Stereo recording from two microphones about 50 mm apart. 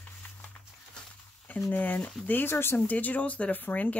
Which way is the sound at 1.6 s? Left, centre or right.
Left.